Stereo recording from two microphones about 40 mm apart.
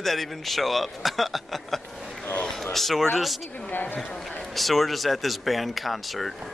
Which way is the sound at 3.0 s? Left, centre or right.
Centre.